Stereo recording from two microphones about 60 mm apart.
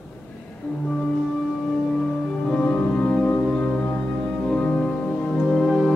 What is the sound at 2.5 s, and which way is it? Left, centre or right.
Music, centre.